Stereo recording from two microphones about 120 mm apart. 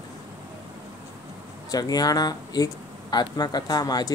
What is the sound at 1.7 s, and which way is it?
Speech, 35° left (ahead or behind).